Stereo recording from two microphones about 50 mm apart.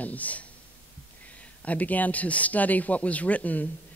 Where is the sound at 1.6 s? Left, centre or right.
Left.